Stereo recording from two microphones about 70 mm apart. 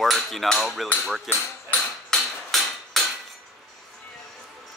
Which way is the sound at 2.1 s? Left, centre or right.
Centre.